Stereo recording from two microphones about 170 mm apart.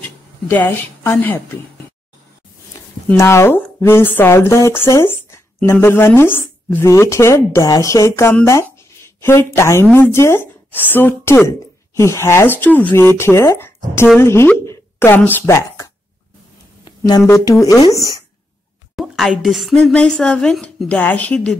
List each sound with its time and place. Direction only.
0.0 s speech: 10° left (ahead or behind)
3.1 s speech: 15° left (ahead or behind)
18.9 s a woman's voice: centre (ahead or behind)